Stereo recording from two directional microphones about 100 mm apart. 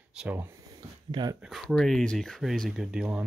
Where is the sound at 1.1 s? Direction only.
45° right (ahead or behind).